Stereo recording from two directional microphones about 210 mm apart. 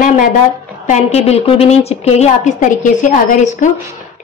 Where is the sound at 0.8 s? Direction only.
30° left (ahead or behind).